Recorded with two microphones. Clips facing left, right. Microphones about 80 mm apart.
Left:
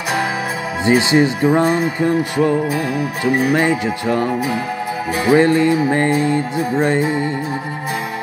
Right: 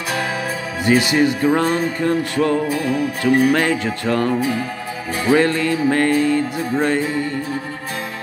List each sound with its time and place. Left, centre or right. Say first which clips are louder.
0.8 s speech: left 2 dB; left
5.2 s music: left 3 dB; centre